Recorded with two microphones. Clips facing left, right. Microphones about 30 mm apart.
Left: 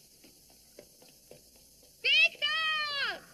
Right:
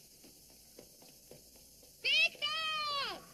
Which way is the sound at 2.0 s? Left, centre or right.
Left.